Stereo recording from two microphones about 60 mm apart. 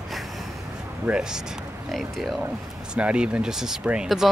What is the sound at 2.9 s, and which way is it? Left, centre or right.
Speech, centre.